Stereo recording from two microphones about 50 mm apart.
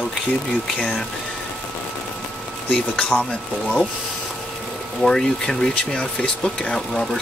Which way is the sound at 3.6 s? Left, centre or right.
Centre.